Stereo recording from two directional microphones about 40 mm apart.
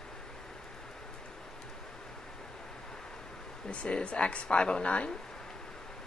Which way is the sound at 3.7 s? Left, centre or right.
Left.